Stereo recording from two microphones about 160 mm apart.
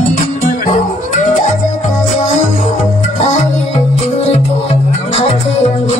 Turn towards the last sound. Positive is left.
turn(degrees=40)  # may be behind; listen again after turning